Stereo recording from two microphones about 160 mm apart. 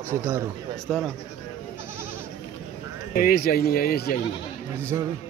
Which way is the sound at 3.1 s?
65° left (ahead or behind).